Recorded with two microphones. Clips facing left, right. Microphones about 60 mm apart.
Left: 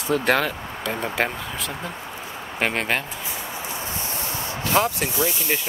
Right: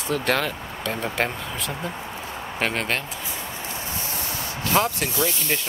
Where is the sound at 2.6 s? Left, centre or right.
Centre.